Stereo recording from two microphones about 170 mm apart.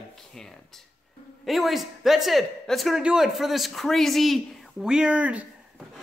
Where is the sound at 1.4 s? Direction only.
Centre (ahead or behind).